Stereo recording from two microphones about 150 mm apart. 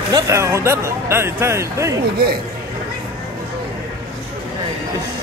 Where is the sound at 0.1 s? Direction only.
20° right (ahead or behind).